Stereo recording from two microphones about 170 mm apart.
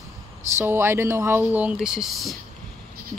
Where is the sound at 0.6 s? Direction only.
15° right (ahead or behind).